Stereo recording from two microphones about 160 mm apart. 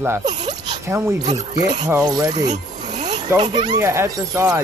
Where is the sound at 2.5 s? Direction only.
45° right (ahead or behind).